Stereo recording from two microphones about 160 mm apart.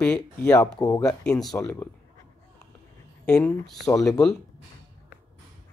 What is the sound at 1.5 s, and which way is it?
Speech, 15° left (ahead or behind).